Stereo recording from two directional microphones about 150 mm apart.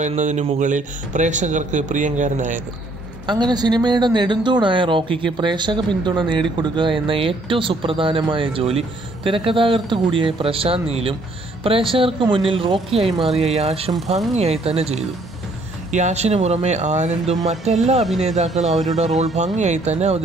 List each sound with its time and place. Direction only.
0.0 s speech: 50° right (ahead or behind)
3.3 s a woman's voice: 30° right (ahead or behind); by 20.2 s 45° right (ahead or behind)